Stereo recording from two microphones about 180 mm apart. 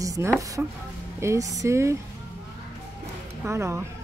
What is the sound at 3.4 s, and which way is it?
Speech, 15° right (ahead or behind).